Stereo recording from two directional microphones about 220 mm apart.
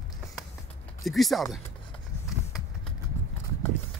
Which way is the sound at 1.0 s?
Centre (ahead or behind).